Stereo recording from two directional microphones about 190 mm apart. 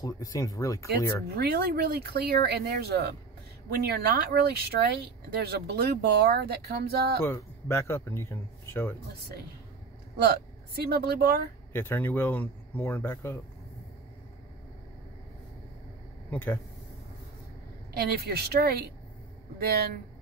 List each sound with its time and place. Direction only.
0.0 s speech: 20° left (ahead or behind)
1.3 s speech: 55° right (ahead or behind)
7.2 s speech: 15° left (ahead or behind)
10.1 s a woman's voice: 55° right (ahead or behind)
11.7 s speech: 10° left (ahead or behind)
16.3 s speech: 10° left (ahead or behind)
17.9 s speech: 55° right (ahead or behind)